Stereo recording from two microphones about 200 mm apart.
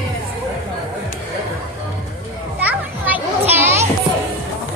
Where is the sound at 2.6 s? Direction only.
10° right (ahead or behind).